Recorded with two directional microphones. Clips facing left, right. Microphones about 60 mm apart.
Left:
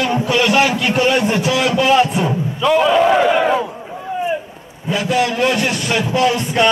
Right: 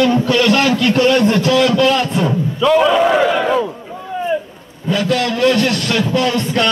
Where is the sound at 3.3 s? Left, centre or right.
Centre.